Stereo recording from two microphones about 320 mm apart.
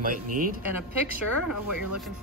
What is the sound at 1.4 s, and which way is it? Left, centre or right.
Speech, left.